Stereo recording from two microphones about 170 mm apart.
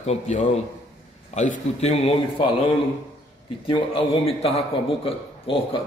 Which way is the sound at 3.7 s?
30° left (ahead or behind).